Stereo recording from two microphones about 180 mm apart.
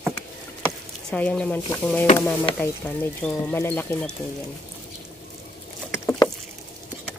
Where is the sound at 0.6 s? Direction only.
5° left (ahead or behind).